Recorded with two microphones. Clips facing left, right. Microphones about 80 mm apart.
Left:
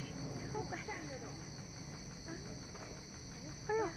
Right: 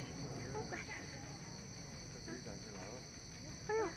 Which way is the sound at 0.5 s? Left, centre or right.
Centre.